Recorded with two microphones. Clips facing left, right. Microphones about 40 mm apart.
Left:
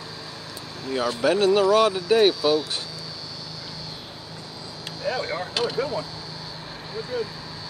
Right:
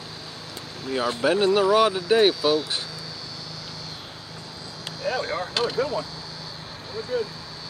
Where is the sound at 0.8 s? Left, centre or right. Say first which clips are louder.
Even; centre.